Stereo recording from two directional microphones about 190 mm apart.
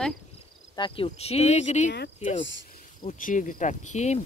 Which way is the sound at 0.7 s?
25° left (ahead or behind).